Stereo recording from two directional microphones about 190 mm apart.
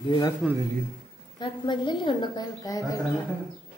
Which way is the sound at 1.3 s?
25° left (ahead or behind).